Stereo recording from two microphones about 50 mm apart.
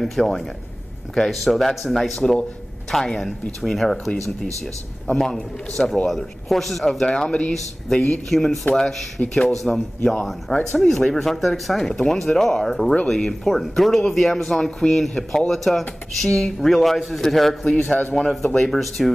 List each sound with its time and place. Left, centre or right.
0.0 s speech: centre
5.1 s speech: centre
8.3 s speech: centre
17.7 s a man's voice: left
18.1 s speech: centre